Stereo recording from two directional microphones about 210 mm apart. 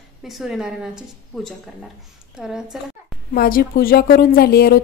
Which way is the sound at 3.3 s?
45° left (ahead or behind).